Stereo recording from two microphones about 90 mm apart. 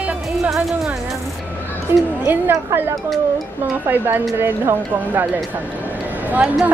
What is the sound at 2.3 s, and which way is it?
Speech, 25° right (ahead or behind).